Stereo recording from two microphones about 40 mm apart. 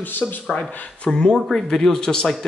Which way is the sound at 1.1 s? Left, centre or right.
Centre.